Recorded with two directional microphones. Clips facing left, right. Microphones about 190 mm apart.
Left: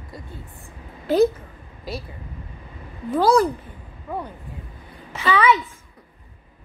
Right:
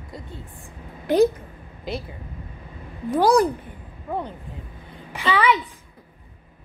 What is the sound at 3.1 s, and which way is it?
A woman's voice, 15° right (ahead or behind).